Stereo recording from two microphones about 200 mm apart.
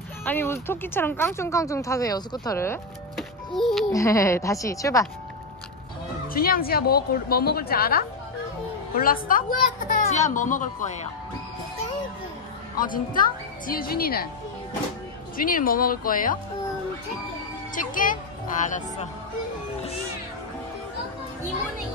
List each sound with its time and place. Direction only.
0.2 s speech: 10° left (ahead or behind)
3.2 s music: centre (ahead or behind)
3.9 s speech: 15° left (ahead or behind)
6.2 s a woman's voice: 45° left (ahead or behind)
12.7 s a woman's voice: 45° left (ahead or behind)
15.3 s a woman's voice: 45° left (ahead or behind)
17.7 s a woman's voice: 40° left (ahead or behind)